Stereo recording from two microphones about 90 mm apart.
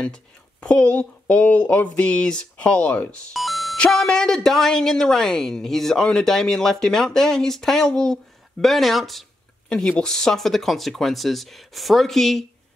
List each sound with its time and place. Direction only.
0.0 s speech: 10° left (ahead or behind)
3.3 s music: centre (ahead or behind)
3.7 s speech: 10° left (ahead or behind)